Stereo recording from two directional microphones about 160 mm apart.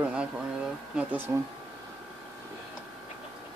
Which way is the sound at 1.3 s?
20° right (ahead or behind).